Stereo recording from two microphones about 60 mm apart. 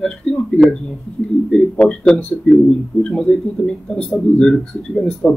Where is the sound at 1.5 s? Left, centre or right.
Centre.